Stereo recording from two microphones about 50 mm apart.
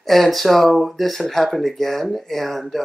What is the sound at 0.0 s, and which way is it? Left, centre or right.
Speech, centre.